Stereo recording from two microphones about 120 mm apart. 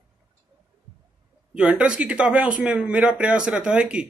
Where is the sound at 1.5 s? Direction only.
10° right (ahead or behind).